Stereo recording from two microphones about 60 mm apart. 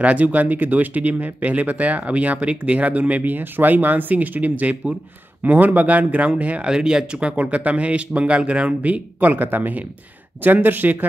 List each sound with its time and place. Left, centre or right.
0.0 s speech: right
6.7 s speech: centre; by 11.1 s right